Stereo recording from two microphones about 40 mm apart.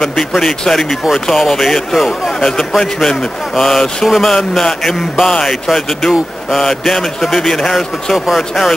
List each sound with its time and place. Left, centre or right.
0.0 s a man's voice: centre